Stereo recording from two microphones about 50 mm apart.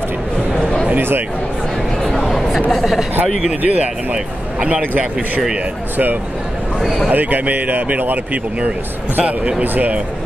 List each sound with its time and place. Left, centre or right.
0.6 s a sound: centre
0.8 s speech: right
2.1 s chatter: centre
2.7 s speech: centre
3.6 s speech: right
6.8 s speech: centre
7.1 s a man's voice: right
9.2 s speech: right